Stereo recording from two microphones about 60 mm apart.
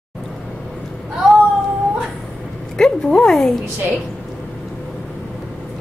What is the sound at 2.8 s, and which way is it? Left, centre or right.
Speech, centre.